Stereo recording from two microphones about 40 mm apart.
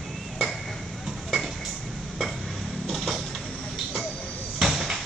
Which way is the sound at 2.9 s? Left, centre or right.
Centre.